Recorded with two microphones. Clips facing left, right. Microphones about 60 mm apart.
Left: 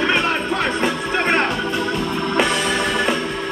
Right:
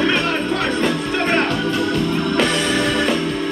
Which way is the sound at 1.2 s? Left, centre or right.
Centre.